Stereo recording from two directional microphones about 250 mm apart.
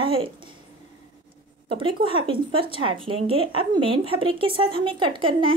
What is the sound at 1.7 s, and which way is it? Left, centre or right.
Speech, centre.